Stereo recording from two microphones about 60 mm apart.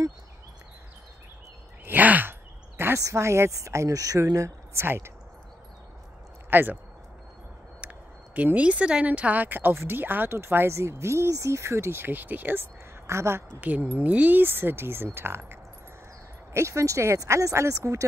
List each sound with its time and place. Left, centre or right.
1.9 s a sound: right
3.0 s speech: right
4.8 s speech: right
6.5 s speech: right
7.8 s a sound: right
8.4 s speech: right
13.0 s a woman's voice: right
13.6 s speech: right
16.5 s speech: right